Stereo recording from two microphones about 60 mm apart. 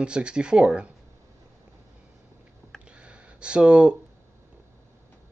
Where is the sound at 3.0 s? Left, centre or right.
Centre.